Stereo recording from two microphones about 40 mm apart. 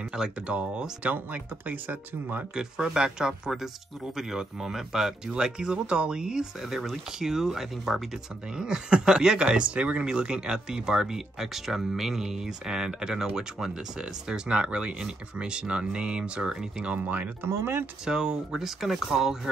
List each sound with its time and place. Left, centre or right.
0.1 s speech: centre
0.5 s speech: right
2.5 s speech: centre
6.6 s speech: centre
16.8 s speech: right
18.0 s speech: centre